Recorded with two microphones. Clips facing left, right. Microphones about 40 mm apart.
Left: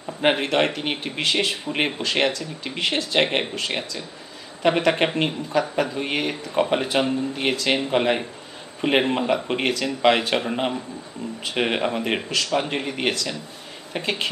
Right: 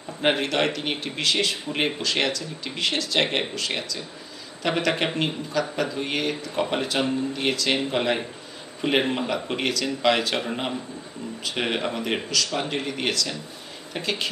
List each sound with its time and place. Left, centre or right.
0.2 s speech: centre
9.6 s speech: left